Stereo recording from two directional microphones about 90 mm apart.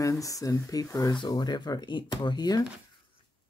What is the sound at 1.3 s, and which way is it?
Speech, 50° left (ahead or behind).